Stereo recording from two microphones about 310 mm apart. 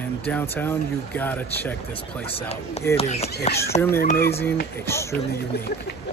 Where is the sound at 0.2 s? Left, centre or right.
Centre.